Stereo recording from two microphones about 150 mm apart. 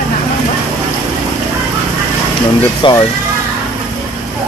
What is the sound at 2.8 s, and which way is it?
Speech, 30° left (ahead or behind).